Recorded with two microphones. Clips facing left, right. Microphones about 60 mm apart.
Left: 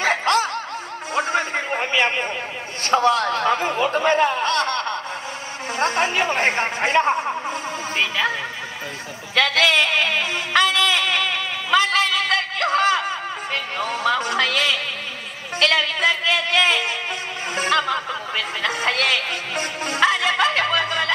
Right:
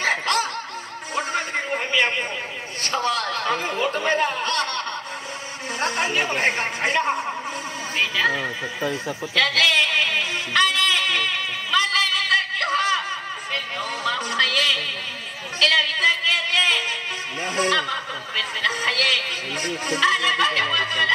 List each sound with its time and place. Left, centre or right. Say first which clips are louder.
0.0 s snicker: left 3 dB; left
1.1 s a sound: left 3 dB; left
2.8 s speech: left 6 dB; left
9.3 s music: left 2 dB; left
11.7 s a sound: left 3 dB; left
13.8 s music: left 6 dB; left